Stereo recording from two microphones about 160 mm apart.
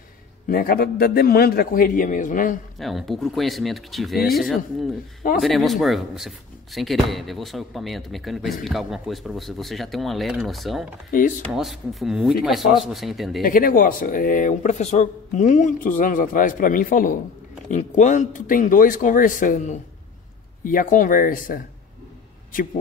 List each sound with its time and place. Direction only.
0.5 s a man's voice: 70° left (ahead or behind)
2.8 s speech: centre (ahead or behind)
11.1 s speech: 55° left (ahead or behind)
11.5 s speech: centre (ahead or behind)
13.4 s speech: 60° left (ahead or behind)
17.6 s speech: 50° left (ahead or behind)